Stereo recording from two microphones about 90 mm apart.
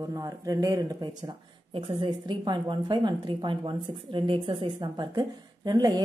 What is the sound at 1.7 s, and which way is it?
A woman's voice, 70° right (ahead or behind).